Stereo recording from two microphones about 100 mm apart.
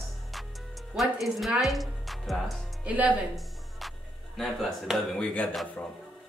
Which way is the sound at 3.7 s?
Centre (ahead or behind).